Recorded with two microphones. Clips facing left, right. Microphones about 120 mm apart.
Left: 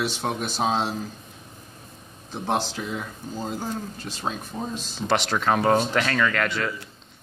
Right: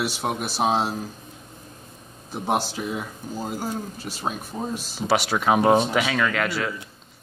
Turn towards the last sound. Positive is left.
turn(degrees=-5)  # may be behind; listen again after turning